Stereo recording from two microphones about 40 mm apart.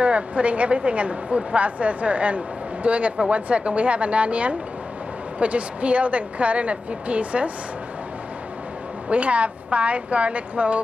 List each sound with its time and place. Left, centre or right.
0.0 s speech: right
9.1 s speech: right